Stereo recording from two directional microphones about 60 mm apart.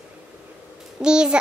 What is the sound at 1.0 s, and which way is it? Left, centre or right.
Speech, centre.